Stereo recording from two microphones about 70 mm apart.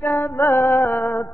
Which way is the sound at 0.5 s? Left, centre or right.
Centre.